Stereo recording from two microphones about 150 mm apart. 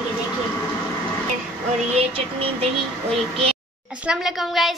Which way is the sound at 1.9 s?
40° right (ahead or behind).